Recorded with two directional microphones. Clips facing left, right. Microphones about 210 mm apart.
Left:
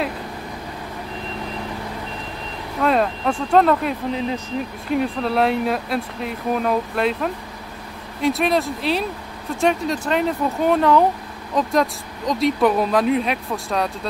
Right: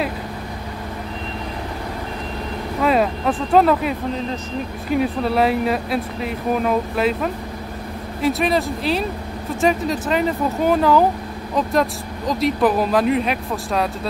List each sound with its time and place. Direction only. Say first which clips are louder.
2.8 s speech: right 1 dB; 5° right (ahead or behind)